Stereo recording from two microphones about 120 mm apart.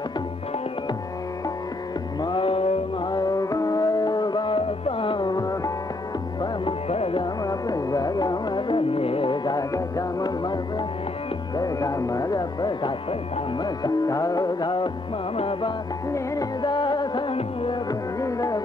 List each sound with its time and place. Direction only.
2.2 s music: 50° left (ahead or behind)
3.1 s music: 30° left (ahead or behind)
6.9 s music: 55° left (ahead or behind)
7.4 s music: 30° left (ahead or behind)
15.3 s music: 50° left (ahead or behind)
16.6 s music: 40° left (ahead or behind)
17.3 s music: 50° left (ahead or behind)
18.2 s music: 30° left (ahead or behind)